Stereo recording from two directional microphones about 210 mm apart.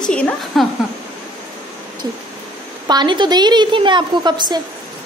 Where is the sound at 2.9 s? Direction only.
20° right (ahead or behind).